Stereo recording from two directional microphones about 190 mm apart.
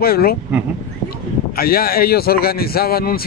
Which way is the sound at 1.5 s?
50° left (ahead or behind).